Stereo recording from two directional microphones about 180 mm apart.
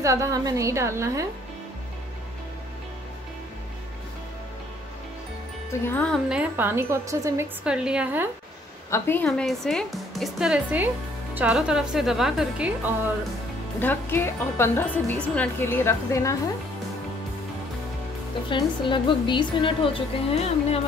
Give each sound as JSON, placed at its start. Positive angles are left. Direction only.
{"t": 0.0, "sound": "a woman's voice", "side_deg": -15}
{"t": 5.7, "sound": "speech", "side_deg": 10}
{"t": 6.2, "sound": "a woman's voice", "side_deg": -5}
{"t": 7.6, "sound": "speech", "side_deg": -5}
{"t": 8.9, "sound": "speech", "side_deg": 10}
{"t": 13.7, "sound": "speech", "side_deg": 10}
{"t": 18.5, "sound": "a woman's voice", "side_deg": 25}